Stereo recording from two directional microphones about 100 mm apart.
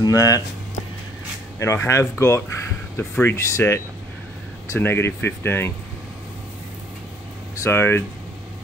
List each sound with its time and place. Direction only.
0.0 s speech: 40° left (ahead or behind)
1.6 s speech: 30° left (ahead or behind)
7.6 s speech: 25° left (ahead or behind)